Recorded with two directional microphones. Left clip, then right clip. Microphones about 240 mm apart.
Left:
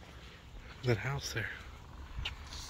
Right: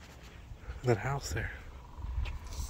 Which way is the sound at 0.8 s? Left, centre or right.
Centre.